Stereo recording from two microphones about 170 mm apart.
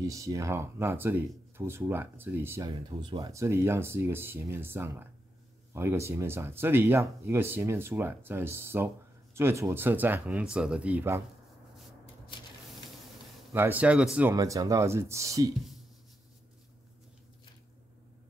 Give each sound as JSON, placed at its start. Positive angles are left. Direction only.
{"t": 0.0, "sound": "speech", "side_deg": -20}
{"t": 3.0, "sound": "speech", "side_deg": -25}
{"t": 12.3, "sound": "a sound", "side_deg": 30}
{"t": 13.5, "sound": "speech", "side_deg": -10}
{"t": 14.3, "sound": "speech", "side_deg": -20}